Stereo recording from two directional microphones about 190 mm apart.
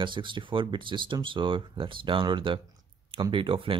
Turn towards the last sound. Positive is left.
turn(degrees=-25)  # may be behind; listen again after turning